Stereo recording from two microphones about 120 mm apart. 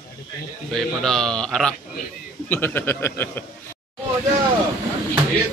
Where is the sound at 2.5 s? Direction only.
15° left (ahead or behind).